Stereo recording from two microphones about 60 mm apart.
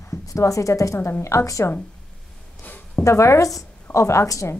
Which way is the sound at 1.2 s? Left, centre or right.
Left.